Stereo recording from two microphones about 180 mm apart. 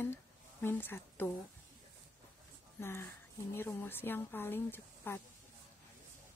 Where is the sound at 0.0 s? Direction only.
10° left (ahead or behind).